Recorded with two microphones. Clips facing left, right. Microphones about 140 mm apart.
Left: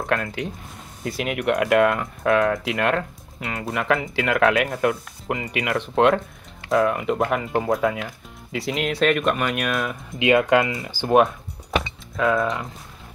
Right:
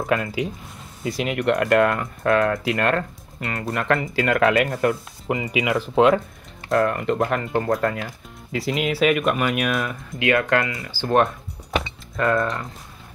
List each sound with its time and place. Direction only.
0.0 s speech: centre (ahead or behind)
10.1 s speech: 20° left (ahead or behind)
12.2 s speech: centre (ahead or behind)